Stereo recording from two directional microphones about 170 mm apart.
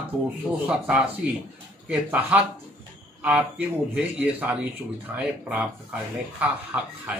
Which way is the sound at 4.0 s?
10° right (ahead or behind).